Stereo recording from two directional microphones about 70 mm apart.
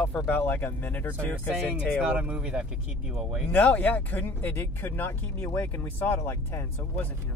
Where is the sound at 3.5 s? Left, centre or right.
Left.